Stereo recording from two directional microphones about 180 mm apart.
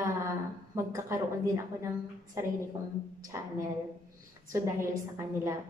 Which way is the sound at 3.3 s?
15° right (ahead or behind).